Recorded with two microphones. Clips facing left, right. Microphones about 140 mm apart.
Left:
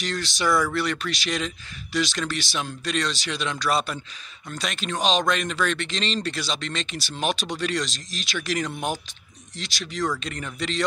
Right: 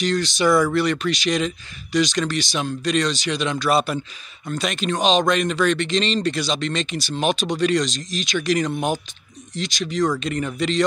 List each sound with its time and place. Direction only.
0.0 s speech: centre (ahead or behind)
0.5 s speech: 20° right (ahead or behind)
0.7 s speech: centre (ahead or behind)